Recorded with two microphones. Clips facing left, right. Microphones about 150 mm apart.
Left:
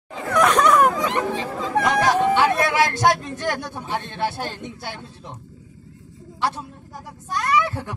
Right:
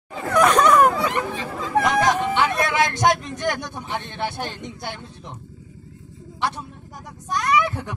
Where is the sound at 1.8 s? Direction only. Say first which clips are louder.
Right 1 dB; centre (ahead or behind).